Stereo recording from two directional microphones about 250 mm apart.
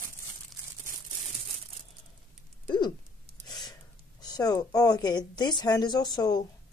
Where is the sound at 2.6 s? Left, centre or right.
Centre.